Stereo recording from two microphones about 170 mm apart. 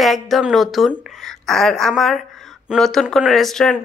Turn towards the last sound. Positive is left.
turn(degrees=0)  # may be behind; listen again after turning